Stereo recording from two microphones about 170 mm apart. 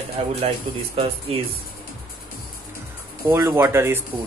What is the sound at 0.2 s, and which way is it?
Speech, 35° right (ahead or behind).